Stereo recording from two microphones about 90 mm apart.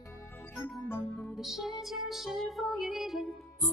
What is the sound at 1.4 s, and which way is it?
Music, 5° right (ahead or behind).